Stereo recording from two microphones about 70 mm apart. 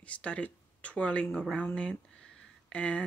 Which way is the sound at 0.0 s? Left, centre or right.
Centre.